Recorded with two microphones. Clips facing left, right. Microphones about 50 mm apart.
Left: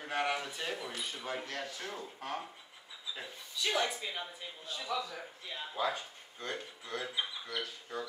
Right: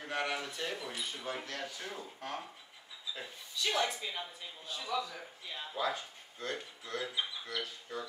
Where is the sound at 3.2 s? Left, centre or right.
Centre.